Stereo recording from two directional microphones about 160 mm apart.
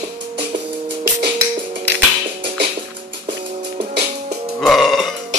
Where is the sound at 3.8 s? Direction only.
85° right.